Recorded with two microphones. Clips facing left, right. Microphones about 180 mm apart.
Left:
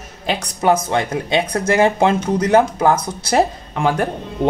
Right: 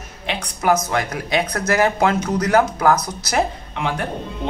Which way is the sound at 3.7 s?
45° left (ahead or behind).